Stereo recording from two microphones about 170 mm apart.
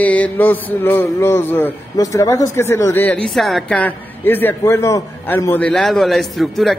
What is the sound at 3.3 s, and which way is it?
Speech, centre (ahead or behind).